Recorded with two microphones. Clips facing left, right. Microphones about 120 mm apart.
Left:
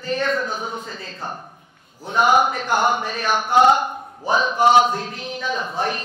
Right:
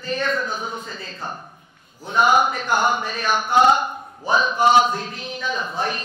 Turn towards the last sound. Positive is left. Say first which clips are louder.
# left 1 dB
turn(degrees=50)  # may be behind; listen again after turning